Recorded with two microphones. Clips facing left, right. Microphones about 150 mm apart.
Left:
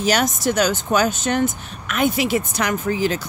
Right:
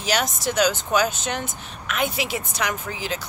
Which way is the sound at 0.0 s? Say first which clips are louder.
Left 5 dB; 45° left (ahead or behind).